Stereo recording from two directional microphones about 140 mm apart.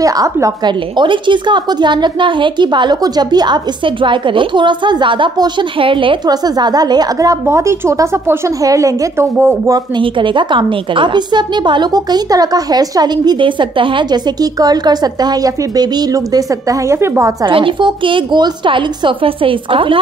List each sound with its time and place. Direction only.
0.0 s a woman's voice: 25° right (ahead or behind)
9.9 s a woman's voice: 35° right (ahead or behind); by 17.5 s 20° right (ahead or behind)
17.5 s a woman's voice: 40° right (ahead or behind)